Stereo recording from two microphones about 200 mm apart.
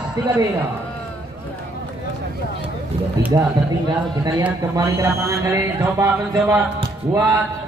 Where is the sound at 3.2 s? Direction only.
10° right (ahead or behind).